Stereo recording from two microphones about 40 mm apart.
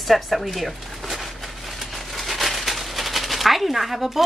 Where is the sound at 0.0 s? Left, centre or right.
Centre.